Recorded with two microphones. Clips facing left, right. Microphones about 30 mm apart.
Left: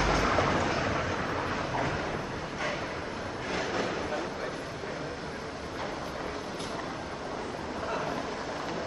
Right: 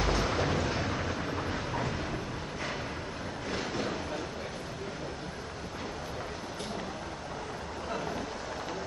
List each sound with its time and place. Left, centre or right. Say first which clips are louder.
0.0 s vehicle: left 3 dB; left
0.8 s vehicle: left 3 dB; left
1.8 s train: left 3 dB; left